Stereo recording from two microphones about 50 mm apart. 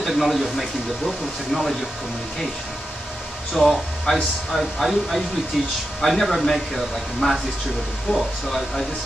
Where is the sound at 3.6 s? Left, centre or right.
Centre.